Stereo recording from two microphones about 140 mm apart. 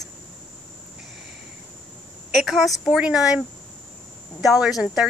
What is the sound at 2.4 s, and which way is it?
A woman's voice, centre (ahead or behind).